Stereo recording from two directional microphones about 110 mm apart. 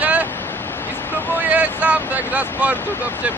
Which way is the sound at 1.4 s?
15° right (ahead or behind).